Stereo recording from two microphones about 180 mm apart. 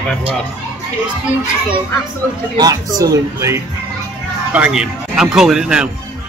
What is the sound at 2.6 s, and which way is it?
Speech, 20° right (ahead or behind).